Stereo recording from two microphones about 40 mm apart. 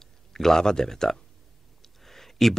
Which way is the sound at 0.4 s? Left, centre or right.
Centre.